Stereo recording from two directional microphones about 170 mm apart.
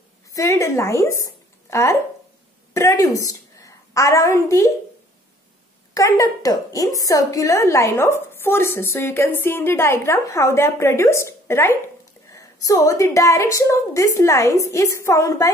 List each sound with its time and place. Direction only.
0.3 s a woman's voice: 20° left (ahead or behind)
5.9 s a woman's voice: 20° left (ahead or behind)